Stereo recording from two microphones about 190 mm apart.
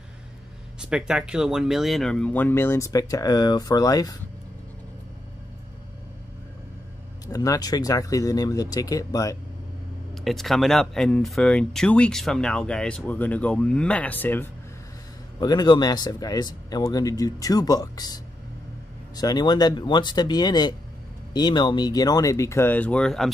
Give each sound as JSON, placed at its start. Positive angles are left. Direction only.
{"t": 0.7, "sound": "speech", "side_deg": -5}
{"t": 7.2, "sound": "speech", "side_deg": 20}
{"t": 10.1, "sound": "speech", "side_deg": 0}
{"t": 15.4, "sound": "speech", "side_deg": 20}